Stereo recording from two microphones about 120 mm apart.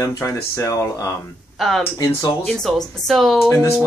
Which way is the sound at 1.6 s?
Centre (ahead or behind).